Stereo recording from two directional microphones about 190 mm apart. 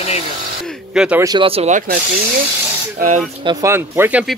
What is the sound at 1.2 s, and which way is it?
Speech, 25° right (ahead or behind).